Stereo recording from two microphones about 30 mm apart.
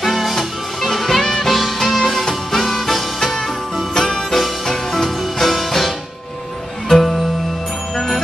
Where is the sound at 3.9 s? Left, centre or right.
Centre.